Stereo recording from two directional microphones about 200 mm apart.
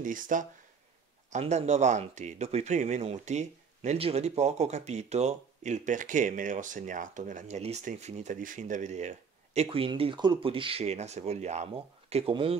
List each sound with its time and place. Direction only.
0.0 s speech: 40° right (ahead or behind)